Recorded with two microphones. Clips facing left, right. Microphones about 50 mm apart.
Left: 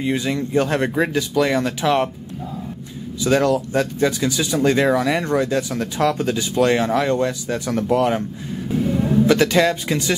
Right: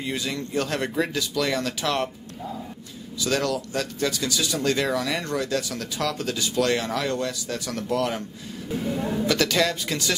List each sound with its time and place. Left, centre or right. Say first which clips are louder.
0.0 s speech: left 8 dB; left
3.2 s speech: left 8 dB; left
9.2 s speech: left 7 dB; left